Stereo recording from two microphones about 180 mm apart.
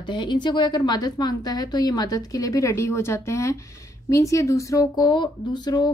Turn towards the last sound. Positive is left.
turn(degrees=25)  # may be behind; listen again after turning